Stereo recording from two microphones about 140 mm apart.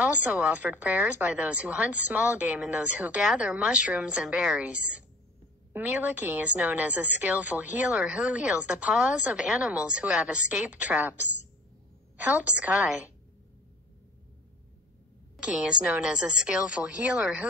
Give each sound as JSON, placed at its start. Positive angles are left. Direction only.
{"t": 0.0, "sound": "a woman's voice", "side_deg": -10}
{"t": 12.2, "sound": "a woman's voice", "side_deg": -10}
{"t": 15.3, "sound": "a woman's voice", "side_deg": -5}